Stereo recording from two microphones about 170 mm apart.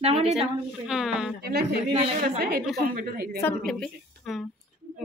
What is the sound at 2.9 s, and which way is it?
Speech, 60° right (ahead or behind).